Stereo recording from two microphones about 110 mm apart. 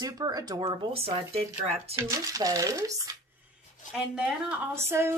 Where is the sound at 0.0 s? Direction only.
35° right (ahead or behind).